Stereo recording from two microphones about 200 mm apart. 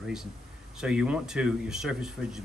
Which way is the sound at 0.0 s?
5° right (ahead or behind).